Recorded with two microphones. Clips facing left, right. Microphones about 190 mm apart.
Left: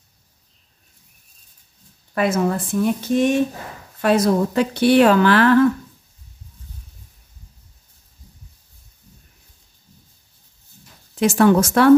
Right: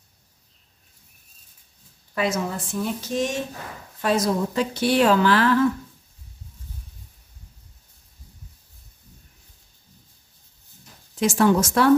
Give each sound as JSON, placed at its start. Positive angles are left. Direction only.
{"t": 2.1, "sound": "speech", "side_deg": 55}
{"t": 11.1, "sound": "speech", "side_deg": 60}